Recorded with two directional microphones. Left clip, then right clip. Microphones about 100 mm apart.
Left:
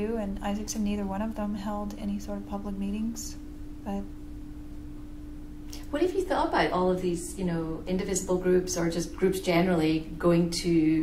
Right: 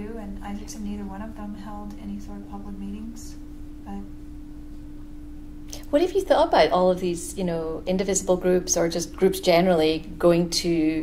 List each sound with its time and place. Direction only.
0.0 s a woman's voice: 35° left (ahead or behind)
5.9 s a woman's voice: 35° right (ahead or behind)